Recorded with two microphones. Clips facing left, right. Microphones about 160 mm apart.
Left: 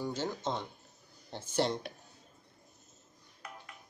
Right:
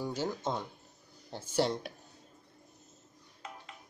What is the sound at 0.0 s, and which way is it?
Speech, 10° right (ahead or behind).